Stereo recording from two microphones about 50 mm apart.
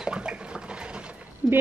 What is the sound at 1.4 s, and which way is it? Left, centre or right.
Speech, right.